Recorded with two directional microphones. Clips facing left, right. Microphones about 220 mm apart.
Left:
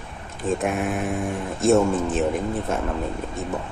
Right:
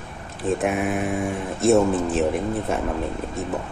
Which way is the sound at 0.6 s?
Centre (ahead or behind).